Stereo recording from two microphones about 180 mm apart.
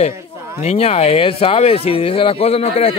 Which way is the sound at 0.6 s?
35° left (ahead or behind).